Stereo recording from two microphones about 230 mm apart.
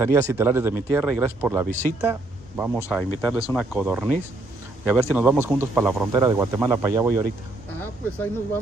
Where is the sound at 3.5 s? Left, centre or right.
Centre.